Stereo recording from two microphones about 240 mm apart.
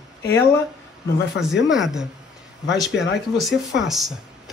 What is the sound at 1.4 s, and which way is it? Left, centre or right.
Speech, left.